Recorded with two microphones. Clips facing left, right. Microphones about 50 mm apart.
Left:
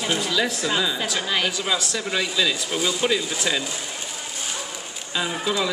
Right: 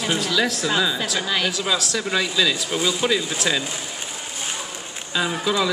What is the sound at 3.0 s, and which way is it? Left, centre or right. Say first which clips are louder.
Speech: right 1 dB; centre.